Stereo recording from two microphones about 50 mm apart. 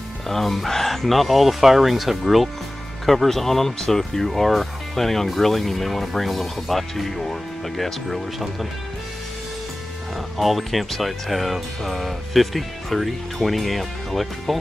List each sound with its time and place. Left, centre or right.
0.3 s speech: centre
10.3 s speech: centre